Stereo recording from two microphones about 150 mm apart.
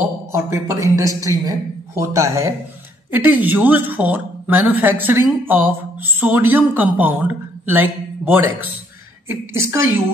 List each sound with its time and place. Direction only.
0.0 s a man's voice: 15° right (ahead or behind)